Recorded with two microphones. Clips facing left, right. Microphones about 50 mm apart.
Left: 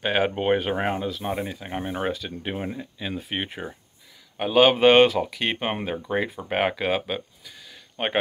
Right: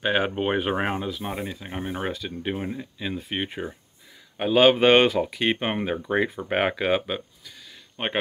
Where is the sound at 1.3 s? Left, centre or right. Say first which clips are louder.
Left 2 dB; centre.